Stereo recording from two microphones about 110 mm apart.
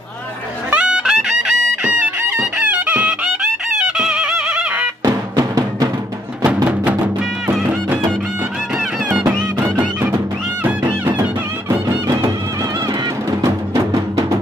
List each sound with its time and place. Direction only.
0.7 s music: 10° right (ahead or behind)
5.0 s music: 35° right (ahead or behind)
6.7 s music: 10° right (ahead or behind)